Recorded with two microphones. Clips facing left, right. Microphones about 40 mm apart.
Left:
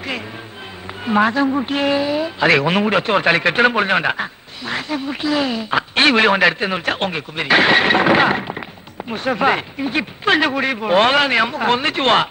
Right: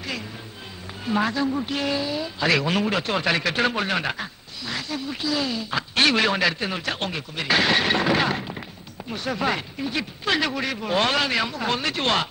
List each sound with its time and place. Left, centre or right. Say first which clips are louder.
1.0 s a man's voice: left 7 dB; left